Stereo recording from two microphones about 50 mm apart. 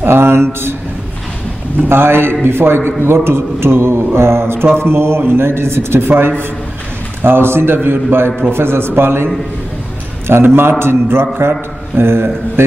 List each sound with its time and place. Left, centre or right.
0.0 s mantra: right
1.9 s a man's voice: right
3.1 s mantra: right
7.2 s a man's voice: right